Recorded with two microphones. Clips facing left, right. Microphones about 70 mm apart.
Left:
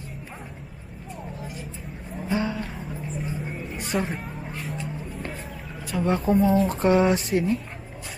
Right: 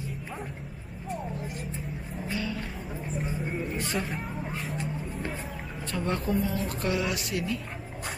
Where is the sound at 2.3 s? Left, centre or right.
Left.